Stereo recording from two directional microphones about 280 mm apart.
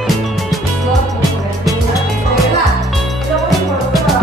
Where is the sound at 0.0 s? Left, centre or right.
Centre.